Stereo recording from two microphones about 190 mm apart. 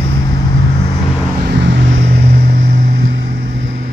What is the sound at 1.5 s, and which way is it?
Vehicle, 65° right (ahead or behind).